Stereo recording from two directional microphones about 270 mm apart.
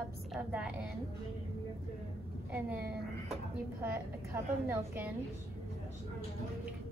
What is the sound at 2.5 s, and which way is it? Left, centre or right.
A woman's voice, centre.